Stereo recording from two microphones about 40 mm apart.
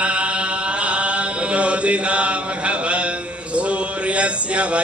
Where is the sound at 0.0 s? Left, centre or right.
Right.